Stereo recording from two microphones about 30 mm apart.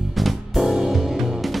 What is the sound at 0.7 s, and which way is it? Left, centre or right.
Music, centre.